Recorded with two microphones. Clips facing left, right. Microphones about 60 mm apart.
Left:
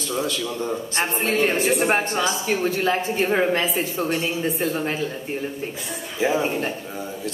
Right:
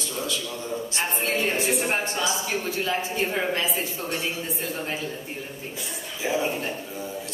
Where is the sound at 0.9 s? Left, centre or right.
Left.